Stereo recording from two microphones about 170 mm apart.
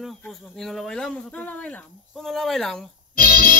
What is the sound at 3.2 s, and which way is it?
Music, 50° right (ahead or behind).